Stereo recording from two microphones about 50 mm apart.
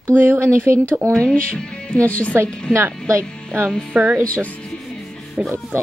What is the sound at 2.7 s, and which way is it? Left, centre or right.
Speech, right.